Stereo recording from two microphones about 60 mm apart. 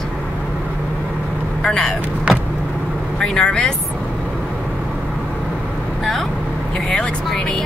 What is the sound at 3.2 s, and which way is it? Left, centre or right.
Speech, centre.